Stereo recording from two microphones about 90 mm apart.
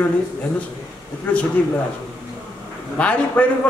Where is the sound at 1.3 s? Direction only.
15° left (ahead or behind).